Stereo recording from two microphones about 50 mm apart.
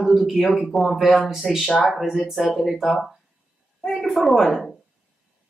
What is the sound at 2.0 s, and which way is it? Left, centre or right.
Speech, centre.